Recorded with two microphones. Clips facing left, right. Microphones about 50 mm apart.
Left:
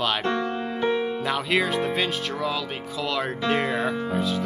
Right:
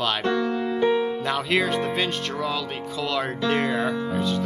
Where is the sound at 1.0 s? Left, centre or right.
Centre.